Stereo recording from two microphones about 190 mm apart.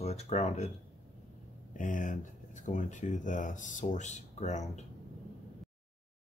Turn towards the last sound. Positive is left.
turn(degrees=40)  # may be behind; listen again after turning